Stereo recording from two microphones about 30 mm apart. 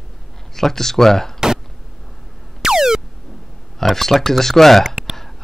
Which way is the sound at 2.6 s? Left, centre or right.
Centre.